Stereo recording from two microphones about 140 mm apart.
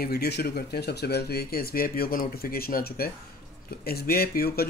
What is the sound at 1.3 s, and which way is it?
Speech, 90° left.